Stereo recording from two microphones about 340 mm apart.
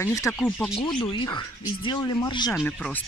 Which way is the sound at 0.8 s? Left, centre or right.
Centre.